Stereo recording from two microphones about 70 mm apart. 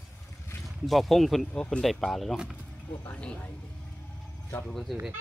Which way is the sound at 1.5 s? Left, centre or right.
Centre.